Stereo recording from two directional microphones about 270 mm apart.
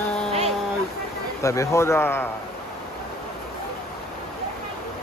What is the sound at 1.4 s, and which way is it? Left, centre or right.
Speech, centre.